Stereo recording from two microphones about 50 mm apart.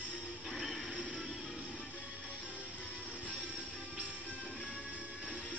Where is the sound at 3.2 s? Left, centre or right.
Left.